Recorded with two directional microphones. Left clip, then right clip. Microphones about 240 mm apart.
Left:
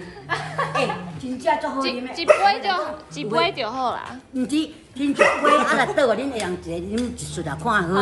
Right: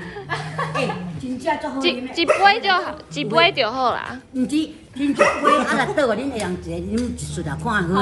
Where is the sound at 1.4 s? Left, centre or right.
Centre.